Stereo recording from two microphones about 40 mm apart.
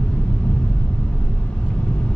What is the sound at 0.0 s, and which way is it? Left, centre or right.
Vehicle, left.